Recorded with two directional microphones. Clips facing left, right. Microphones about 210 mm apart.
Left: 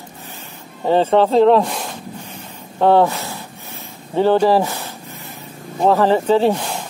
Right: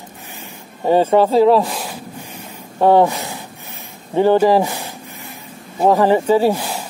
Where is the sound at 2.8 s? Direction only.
15° right (ahead or behind).